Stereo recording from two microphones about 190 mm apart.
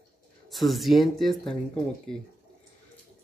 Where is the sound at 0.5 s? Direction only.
Centre (ahead or behind).